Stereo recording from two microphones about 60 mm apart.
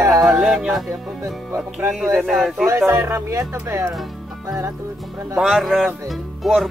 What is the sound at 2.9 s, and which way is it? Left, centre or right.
Speech, right.